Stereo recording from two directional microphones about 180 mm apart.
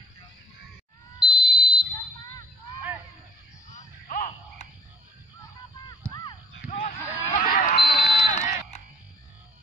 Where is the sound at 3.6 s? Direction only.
45° left (ahead or behind).